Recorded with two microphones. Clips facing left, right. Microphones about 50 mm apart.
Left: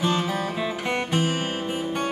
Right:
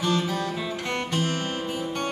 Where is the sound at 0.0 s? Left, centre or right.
Centre.